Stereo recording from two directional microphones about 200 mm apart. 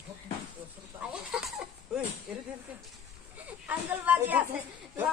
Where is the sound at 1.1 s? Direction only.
5° right (ahead or behind).